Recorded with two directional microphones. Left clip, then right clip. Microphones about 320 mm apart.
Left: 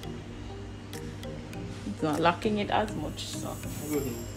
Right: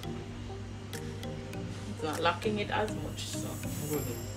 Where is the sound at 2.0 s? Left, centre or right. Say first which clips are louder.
Left 4 dB; left.